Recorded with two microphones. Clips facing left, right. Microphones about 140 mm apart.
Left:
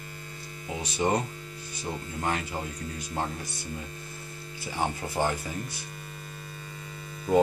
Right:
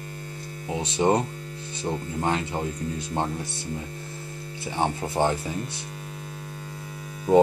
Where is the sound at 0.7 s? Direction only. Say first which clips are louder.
Right 5 dB; 25° right (ahead or behind).